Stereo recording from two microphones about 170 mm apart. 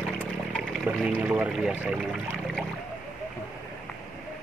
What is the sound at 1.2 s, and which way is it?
Speech, 5° right (ahead or behind).